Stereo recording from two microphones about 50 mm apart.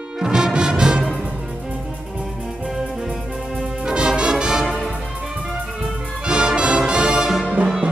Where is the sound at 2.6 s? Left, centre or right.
Centre.